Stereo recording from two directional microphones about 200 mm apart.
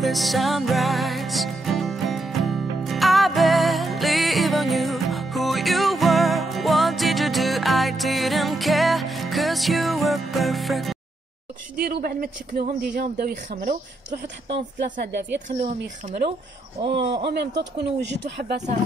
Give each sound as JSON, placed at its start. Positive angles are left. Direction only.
{"t": 0.0, "sound": "music", "side_deg": 0}
{"t": 11.8, "sound": "speech", "side_deg": -50}
{"t": 17.0, "sound": "speech", "side_deg": -25}
{"t": 17.3, "sound": "speech", "side_deg": -55}